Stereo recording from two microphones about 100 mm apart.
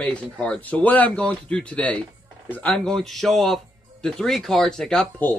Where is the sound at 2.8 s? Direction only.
5° left (ahead or behind).